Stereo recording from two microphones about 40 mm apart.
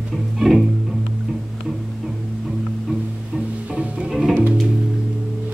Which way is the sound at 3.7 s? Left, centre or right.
Right.